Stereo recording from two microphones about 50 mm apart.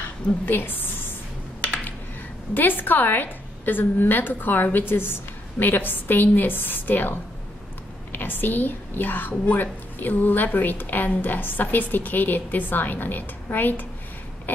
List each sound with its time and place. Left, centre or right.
0.0 s a woman's voice: left
2.5 s a woman's voice: left